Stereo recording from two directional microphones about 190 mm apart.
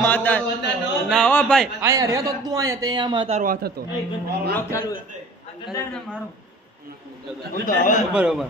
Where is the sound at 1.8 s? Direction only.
15° right (ahead or behind).